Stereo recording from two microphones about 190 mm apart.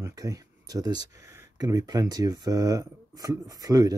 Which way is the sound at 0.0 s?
20° right (ahead or behind).